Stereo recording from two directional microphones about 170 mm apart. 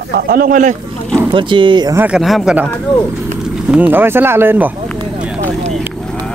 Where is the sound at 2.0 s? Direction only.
5° right (ahead or behind).